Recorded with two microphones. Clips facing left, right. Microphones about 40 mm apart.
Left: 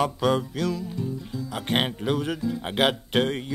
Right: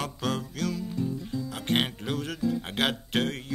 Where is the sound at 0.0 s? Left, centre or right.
Centre.